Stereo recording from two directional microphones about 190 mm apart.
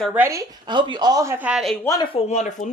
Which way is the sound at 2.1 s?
35° left (ahead or behind).